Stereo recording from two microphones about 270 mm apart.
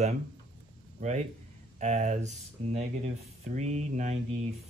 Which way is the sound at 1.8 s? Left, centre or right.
Right.